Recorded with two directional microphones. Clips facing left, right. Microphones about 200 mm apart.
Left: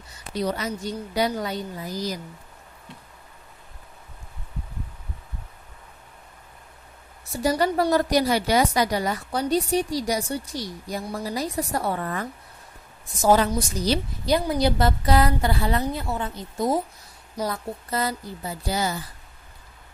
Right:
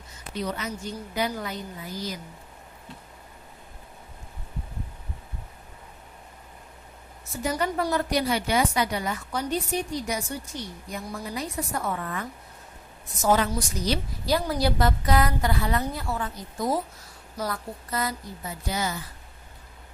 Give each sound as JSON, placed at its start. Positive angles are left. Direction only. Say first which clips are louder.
{"t": 0.3, "sound": "a woman's voice", "louder": "left 4 dB", "side_deg": 35}
{"t": 7.4, "sound": "a woman's voice", "louder": "left 5 dB", "side_deg": 35}
{"t": 14.2, "sound": "a woman's voice", "louder": "left 3 dB", "side_deg": 15}
{"t": 14.8, "sound": "a woman's voice", "louder": "left 3 dB", "side_deg": 30}
{"t": 17.8, "sound": "a woman's voice", "louder": "left 3 dB", "side_deg": 30}